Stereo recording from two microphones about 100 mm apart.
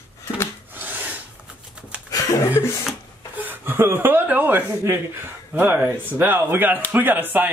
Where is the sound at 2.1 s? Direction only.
35° left (ahead or behind).